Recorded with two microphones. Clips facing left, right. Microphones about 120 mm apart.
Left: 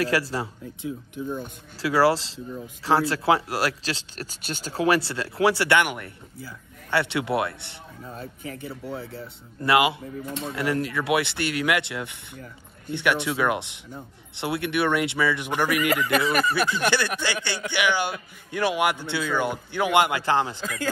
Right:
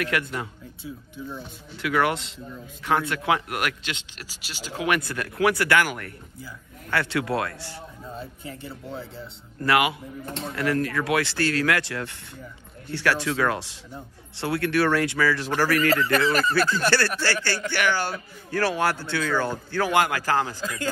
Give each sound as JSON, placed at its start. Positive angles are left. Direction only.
{"t": 0.0, "sound": "speech", "side_deg": 30}
{"t": 1.8, "sound": "a man's voice", "side_deg": 30}
{"t": 8.5, "sound": "speech", "side_deg": 10}
{"t": 9.6, "sound": "a man's voice", "side_deg": 25}
{"t": 20.6, "sound": "speech", "side_deg": 0}